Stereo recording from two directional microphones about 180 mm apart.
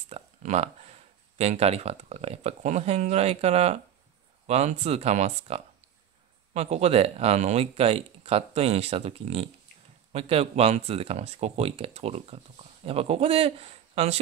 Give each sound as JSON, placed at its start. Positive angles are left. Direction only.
{"t": 0.1, "sound": "speech", "side_deg": -40}